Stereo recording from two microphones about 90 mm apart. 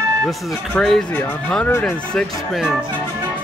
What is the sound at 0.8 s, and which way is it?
Speech, 5° left (ahead or behind).